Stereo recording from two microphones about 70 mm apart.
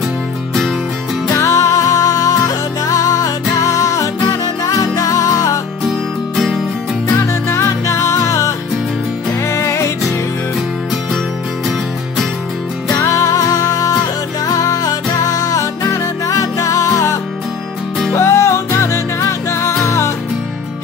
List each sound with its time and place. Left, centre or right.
1.3 s music: left
5.9 s music: centre
7.4 s music: left
13.0 s music: left